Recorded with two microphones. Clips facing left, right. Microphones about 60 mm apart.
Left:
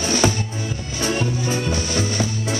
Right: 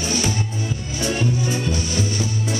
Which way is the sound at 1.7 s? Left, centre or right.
Left.